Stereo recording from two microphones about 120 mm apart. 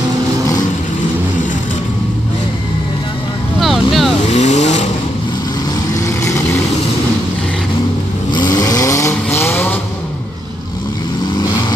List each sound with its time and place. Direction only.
3.5 s vehicle: centre (ahead or behind)
4.3 s vehicle: 75° left (ahead or behind)
8.3 s vehicle: 35° left (ahead or behind); by 9.8 s 15° left (ahead or behind)